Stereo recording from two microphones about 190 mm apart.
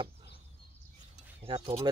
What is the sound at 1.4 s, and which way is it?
Speech, 25° right (ahead or behind).